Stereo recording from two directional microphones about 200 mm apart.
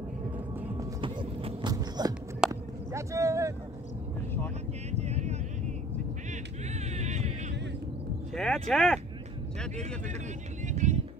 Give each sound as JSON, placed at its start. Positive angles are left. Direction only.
{"t": 1.0, "sound": "a sound", "side_deg": -25}
{"t": 2.4, "sound": "a sound", "side_deg": -5}
{"t": 2.9, "sound": "vehicle", "side_deg": -15}
{"t": 4.9, "sound": "vehicle", "side_deg": -35}
{"t": 6.9, "sound": "vehicle", "side_deg": -35}
{"t": 8.4, "sound": "speech", "side_deg": 5}
{"t": 10.7, "sound": "music", "side_deg": -35}